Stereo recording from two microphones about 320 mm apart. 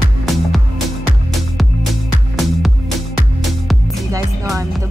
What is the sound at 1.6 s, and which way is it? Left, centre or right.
Music, centre.